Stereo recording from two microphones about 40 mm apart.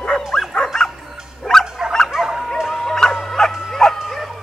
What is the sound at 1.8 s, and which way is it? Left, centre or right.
Dog, centre.